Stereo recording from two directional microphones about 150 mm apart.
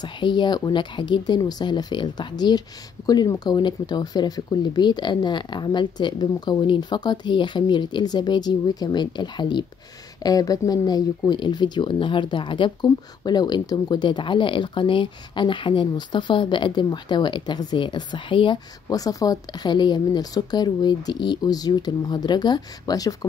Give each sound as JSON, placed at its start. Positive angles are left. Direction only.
{"t": 0.0, "sound": "speech", "side_deg": 30}